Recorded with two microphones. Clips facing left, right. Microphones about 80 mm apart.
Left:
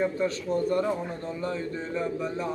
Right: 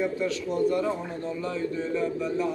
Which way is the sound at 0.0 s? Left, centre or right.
Left.